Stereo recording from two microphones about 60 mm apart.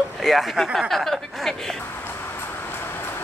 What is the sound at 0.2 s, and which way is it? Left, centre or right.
Speech, centre.